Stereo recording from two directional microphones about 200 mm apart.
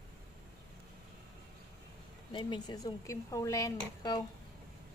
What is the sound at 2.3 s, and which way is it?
Speech, 20° left (ahead or behind).